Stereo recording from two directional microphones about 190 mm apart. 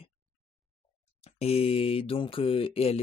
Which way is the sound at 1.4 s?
30° left (ahead or behind).